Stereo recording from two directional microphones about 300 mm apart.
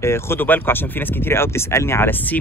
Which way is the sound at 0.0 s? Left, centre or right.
Centre.